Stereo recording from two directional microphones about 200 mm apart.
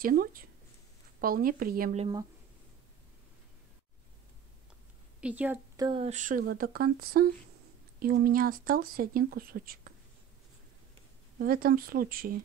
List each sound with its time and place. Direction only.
0.0 s a sound: 45° right (ahead or behind)
1.2 s speech: 45° right (ahead or behind)
2.0 s speech: 20° right (ahead or behind)
5.2 s a woman's voice: 10° right (ahead or behind)
5.8 s speech: 20° right (ahead or behind)
6.0 s speech: 40° right (ahead or behind)
6.4 s speech: 50° right (ahead or behind)
11.3 s speech: 45° right (ahead or behind)